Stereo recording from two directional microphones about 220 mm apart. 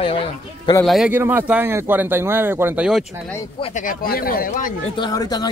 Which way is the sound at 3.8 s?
40° left (ahead or behind).